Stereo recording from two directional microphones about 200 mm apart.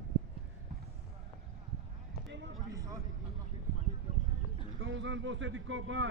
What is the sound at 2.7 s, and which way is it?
Vehicle, 15° right (ahead or behind).